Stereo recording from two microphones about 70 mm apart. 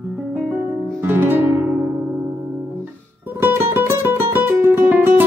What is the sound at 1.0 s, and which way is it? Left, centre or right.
Music, right.